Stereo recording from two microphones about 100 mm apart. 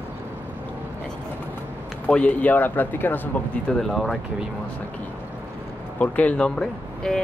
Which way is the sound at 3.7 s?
5° left (ahead or behind).